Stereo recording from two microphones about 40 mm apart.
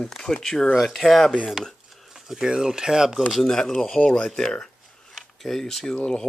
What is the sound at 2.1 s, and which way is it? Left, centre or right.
Speech, centre.